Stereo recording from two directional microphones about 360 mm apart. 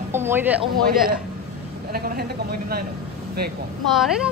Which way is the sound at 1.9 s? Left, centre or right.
Right.